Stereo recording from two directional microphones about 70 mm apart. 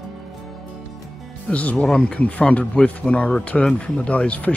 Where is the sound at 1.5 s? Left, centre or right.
Centre.